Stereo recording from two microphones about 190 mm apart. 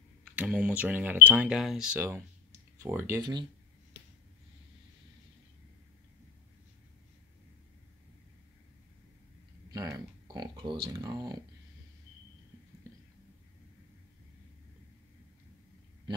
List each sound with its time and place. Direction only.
0.4 s speech: 5° right (ahead or behind)
9.7 s speech: 15° right (ahead or behind)